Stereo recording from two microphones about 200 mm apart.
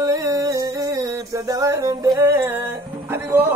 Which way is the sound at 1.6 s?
15° right (ahead or behind).